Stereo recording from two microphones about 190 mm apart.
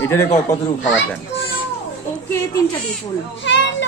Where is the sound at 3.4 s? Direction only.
70° left (ahead or behind).